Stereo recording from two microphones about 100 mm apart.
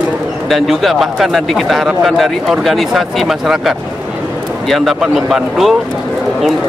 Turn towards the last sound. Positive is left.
turn(degrees=-5)  # may be behind; listen again after turning